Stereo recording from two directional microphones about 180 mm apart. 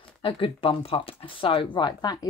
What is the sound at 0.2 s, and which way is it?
Speech, 30° left (ahead or behind).